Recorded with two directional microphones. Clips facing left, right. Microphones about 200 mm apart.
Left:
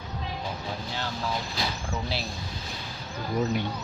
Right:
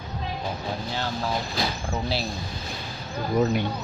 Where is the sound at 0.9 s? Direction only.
35° right (ahead or behind).